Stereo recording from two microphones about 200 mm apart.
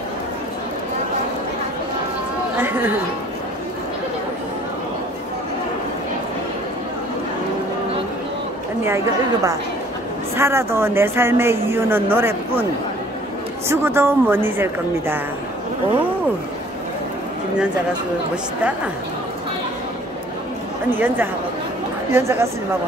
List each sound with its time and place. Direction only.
8.8 s speech: 15° right (ahead or behind)
13.7 s speech: 10° right (ahead or behind)
20.9 s speech: 10° right (ahead or behind)